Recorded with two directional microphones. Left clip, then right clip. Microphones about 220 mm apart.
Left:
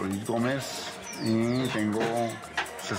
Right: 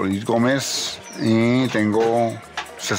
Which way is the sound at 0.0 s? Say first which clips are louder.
Right 9 dB; 45° right (ahead or behind).